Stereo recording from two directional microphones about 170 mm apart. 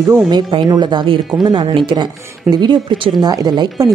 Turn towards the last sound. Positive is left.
turn(degrees=-25)  # may be behind; listen again after turning